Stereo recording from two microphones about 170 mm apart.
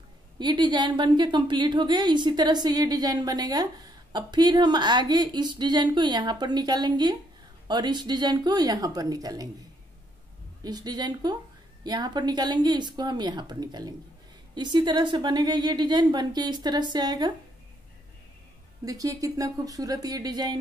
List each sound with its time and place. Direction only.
0.4 s a woman's voice: 25° right (ahead or behind)
10.6 s a woman's voice: 25° right (ahead or behind)
18.9 s a woman's voice: 20° right (ahead or behind)